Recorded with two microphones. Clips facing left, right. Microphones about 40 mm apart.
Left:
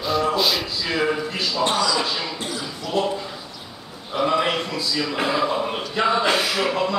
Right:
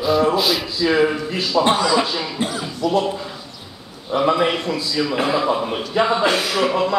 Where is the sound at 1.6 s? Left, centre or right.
Right.